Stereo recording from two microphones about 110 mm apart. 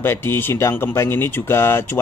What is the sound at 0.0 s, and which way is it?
Speech, 20° left (ahead or behind).